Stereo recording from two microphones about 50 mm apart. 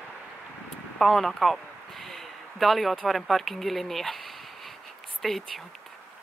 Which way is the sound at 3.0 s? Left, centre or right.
Centre.